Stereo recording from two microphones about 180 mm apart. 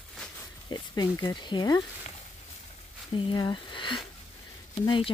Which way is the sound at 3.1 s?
25° left (ahead or behind).